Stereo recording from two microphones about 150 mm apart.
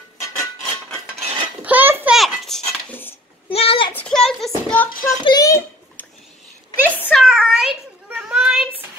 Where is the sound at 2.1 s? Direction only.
Centre (ahead or behind).